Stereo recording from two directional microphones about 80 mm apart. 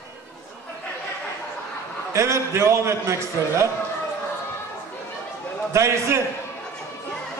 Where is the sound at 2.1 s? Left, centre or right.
Right.